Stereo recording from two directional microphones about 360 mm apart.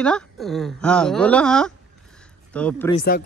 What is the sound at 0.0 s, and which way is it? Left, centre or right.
Speech, centre.